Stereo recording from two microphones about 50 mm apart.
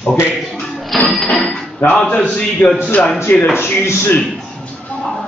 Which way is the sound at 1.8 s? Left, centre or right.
Left.